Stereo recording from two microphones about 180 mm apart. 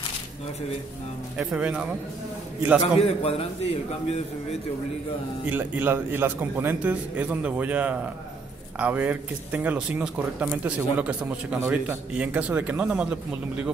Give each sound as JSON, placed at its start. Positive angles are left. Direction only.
{"t": 1.4, "sound": "speech", "side_deg": -5}
{"t": 2.8, "sound": "a man's voice", "side_deg": 35}
{"t": 5.4, "sound": "speech", "side_deg": -10}